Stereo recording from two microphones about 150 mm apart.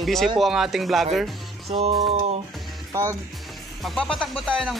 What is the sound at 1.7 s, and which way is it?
Music, 45° right (ahead or behind).